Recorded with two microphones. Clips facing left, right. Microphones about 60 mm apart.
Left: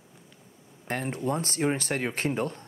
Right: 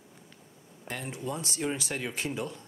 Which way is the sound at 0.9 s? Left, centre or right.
Left.